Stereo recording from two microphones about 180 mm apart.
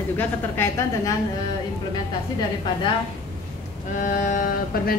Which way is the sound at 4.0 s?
45° left (ahead or behind).